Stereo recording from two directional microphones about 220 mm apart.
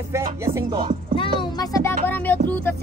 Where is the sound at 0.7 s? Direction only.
25° right (ahead or behind).